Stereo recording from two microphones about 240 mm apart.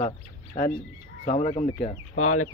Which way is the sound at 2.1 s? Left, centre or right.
Left.